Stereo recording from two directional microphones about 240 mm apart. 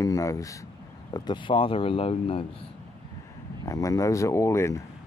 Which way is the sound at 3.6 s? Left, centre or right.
Centre.